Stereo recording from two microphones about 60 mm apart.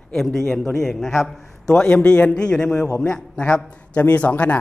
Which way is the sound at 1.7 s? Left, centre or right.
Centre.